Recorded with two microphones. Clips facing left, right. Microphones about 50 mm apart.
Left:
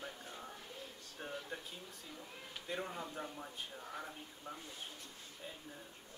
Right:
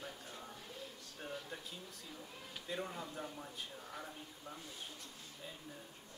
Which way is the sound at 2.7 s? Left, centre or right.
Centre.